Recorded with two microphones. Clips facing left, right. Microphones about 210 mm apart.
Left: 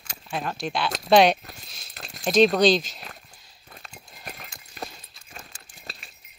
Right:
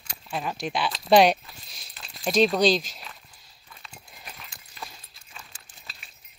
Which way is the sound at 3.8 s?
45° left (ahead or behind).